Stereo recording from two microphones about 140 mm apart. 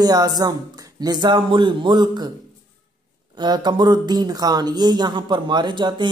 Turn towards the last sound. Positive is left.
turn(degrees=-35)  # may be behind; listen again after turning